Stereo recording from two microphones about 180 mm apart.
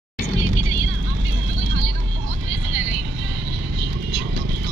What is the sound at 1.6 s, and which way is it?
Music, 90° right.